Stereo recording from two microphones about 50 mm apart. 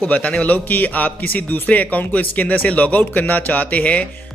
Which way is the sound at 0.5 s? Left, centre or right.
Left.